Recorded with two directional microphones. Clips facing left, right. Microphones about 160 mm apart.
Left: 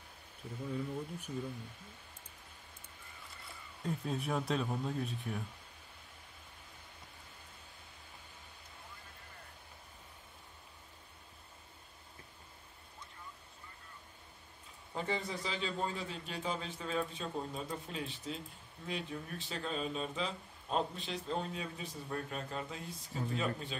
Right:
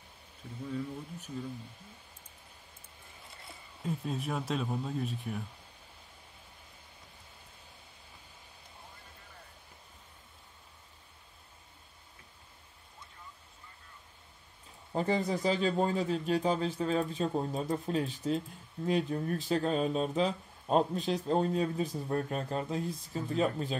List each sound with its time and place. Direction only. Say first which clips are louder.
3.8 s speech: right 2 dB; centre (ahead or behind)
14.9 s speech: right 8 dB; 40° right (ahead or behind)